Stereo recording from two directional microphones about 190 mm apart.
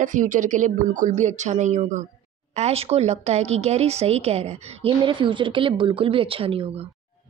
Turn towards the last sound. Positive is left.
turn(degrees=-30)  # may be behind; listen again after turning